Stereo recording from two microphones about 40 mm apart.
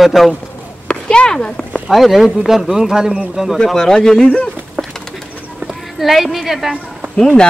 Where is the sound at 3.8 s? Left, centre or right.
Centre.